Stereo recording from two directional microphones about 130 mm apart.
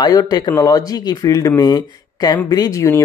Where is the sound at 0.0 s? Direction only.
30° left (ahead or behind).